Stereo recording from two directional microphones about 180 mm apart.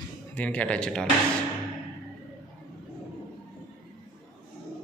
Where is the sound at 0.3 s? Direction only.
10° left (ahead or behind).